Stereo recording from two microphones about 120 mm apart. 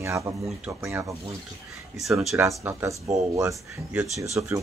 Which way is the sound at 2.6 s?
20° right (ahead or behind).